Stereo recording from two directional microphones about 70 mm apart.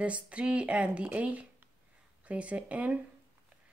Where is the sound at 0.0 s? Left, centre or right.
Centre.